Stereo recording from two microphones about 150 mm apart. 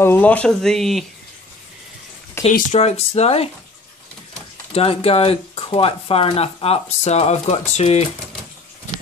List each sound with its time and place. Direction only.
0.0 s speech: 15° left (ahead or behind)
2.4 s a sound: 15° left (ahead or behind)
2.7 s speech: 45° left (ahead or behind)
4.7 s speech: 40° left (ahead or behind)